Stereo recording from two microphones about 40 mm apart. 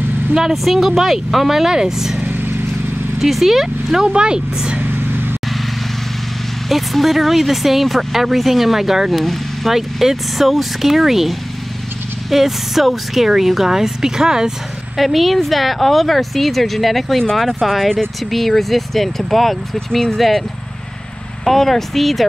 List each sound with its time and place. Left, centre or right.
0.3 s speech: centre
3.2 s speech: centre
4.1 s speech: right
4.7 s vehicle: right
6.7 s speech: centre
9.2 s vehicle: centre
9.7 s speech: centre
15.0 s speech: centre
20.2 s speech: centre
21.5 s speech: centre